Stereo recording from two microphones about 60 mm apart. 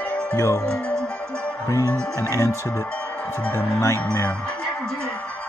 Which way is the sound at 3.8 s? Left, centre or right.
Left.